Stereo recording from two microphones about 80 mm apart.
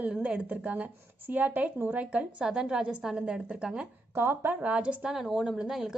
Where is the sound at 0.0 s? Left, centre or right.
Centre.